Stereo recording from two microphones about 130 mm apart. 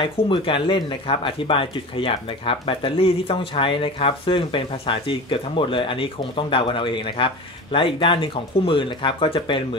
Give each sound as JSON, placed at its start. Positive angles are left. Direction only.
{"t": 0.0, "sound": "speech", "side_deg": 40}